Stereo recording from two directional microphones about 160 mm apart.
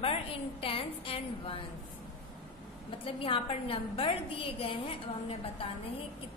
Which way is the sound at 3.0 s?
35° left (ahead or behind).